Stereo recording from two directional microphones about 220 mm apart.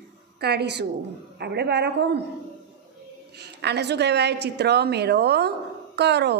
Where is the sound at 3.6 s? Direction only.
50° right (ahead or behind).